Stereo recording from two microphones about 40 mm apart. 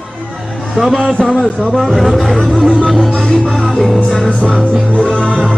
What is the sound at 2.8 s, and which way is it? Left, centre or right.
Music, centre.